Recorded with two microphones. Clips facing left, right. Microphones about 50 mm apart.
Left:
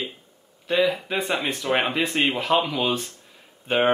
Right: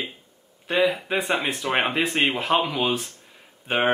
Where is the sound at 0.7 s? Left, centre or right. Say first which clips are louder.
Even; centre.